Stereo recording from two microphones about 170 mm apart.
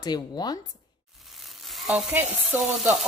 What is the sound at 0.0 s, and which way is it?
Speech, 25° left (ahead or behind).